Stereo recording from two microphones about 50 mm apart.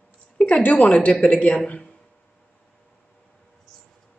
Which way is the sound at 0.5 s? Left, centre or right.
Left.